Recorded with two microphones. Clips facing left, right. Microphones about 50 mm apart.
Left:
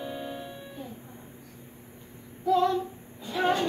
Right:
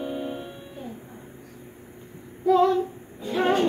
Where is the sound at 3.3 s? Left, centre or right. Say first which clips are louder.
Right 4 dB; right.